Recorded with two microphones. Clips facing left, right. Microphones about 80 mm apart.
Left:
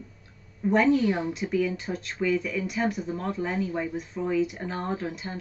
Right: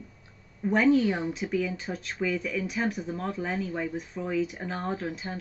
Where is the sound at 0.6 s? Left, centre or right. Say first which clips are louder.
Left 1 dB; centre.